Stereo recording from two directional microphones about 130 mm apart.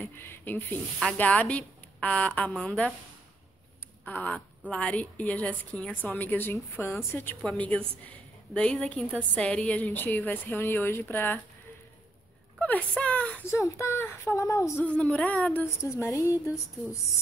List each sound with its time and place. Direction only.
0.0 s a woman's voice: 15° left (ahead or behind)
4.0 s a woman's voice: 10° left (ahead or behind)
12.5 s a sound: 10° left (ahead or behind)
13.5 s a woman's voice: 20° left (ahead or behind)
15.0 s a woman's voice: 10° left (ahead or behind)
15.8 s a woman's voice: 20° left (ahead or behind)